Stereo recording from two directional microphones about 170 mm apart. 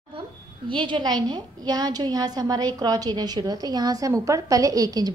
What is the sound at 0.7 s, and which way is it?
A woman's voice, 30° right (ahead or behind).